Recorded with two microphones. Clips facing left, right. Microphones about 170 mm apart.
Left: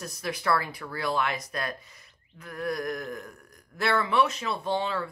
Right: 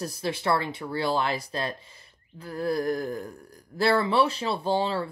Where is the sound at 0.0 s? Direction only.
30° right (ahead or behind).